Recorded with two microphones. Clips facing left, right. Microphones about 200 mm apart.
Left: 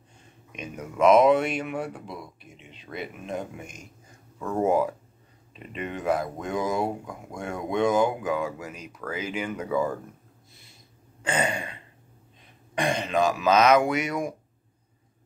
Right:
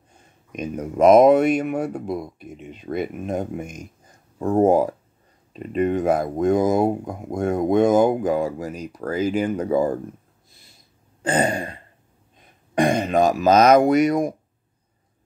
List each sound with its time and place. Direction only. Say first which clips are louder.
0.5 s speech: right 9 dB; 40° right (ahead or behind)
4.4 s speech: right 7 dB; 35° right (ahead or behind)
11.2 s speech: right 6 dB; 35° right (ahead or behind)